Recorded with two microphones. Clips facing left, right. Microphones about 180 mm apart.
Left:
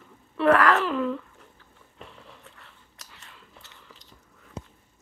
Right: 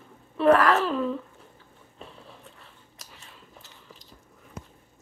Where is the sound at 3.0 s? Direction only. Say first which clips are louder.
Right 1 dB; 85° left.